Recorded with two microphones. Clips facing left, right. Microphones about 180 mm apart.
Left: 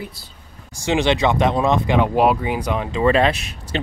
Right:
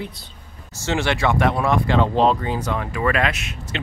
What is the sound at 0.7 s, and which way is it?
Speech, 15° left (ahead or behind).